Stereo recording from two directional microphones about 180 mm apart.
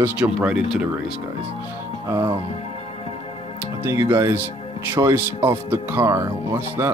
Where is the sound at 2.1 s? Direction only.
25° right (ahead or behind).